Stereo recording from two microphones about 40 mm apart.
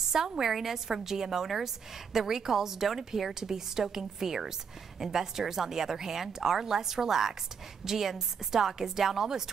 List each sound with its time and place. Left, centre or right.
0.1 s a woman's voice: centre